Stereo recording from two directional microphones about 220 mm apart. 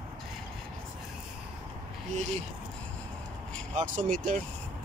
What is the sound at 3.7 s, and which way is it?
Speech, 35° right (ahead or behind).